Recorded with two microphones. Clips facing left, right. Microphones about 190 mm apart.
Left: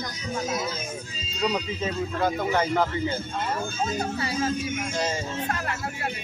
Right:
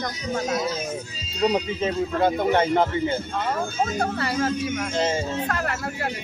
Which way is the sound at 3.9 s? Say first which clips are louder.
Right 3 dB; 65° right (ahead or behind).